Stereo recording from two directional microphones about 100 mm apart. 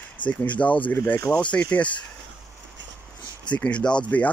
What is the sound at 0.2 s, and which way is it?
Speech, 15° left (ahead or behind).